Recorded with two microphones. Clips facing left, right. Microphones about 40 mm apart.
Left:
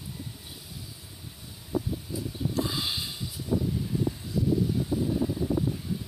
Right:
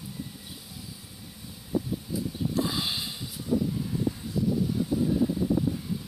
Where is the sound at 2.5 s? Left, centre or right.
Right.